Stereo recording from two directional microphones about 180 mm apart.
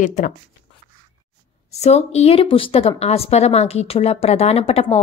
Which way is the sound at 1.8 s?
35° left (ahead or behind).